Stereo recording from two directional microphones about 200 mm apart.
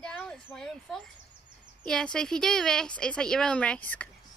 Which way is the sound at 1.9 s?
5° left (ahead or behind).